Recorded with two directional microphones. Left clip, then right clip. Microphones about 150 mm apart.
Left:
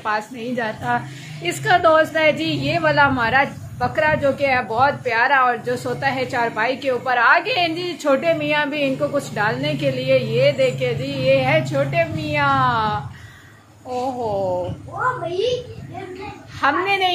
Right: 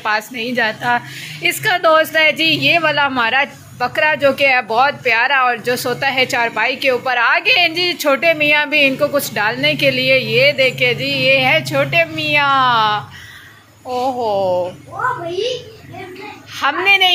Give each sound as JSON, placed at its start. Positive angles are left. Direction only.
{"t": 0.0, "sound": "a woman's voice", "side_deg": -10}
{"t": 14.2, "sound": "speech", "side_deg": -20}
{"t": 16.6, "sound": "a woman's voice", "side_deg": -10}